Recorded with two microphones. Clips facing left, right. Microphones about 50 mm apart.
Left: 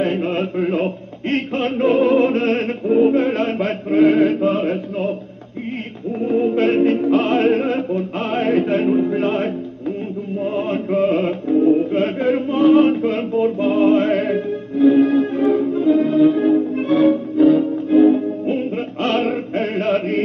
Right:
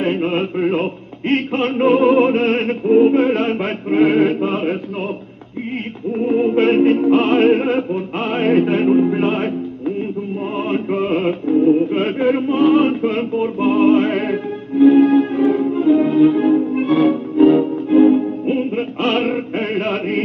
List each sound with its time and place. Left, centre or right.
0.0 s music: centre
2.9 s music: right
3.2 s music: centre
6.2 s music: right
6.6 s music: centre
10.7 s music: centre